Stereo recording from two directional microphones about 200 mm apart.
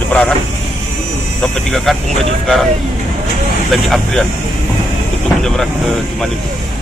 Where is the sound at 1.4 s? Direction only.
Centre (ahead or behind).